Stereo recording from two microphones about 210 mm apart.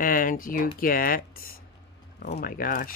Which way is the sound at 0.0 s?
40° left (ahead or behind).